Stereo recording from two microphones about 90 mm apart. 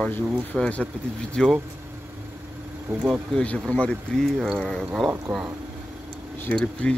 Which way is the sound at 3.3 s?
15° left (ahead or behind).